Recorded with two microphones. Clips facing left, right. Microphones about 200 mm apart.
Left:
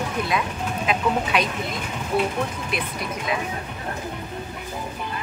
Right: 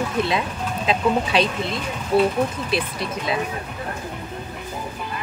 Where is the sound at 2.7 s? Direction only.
30° right (ahead or behind).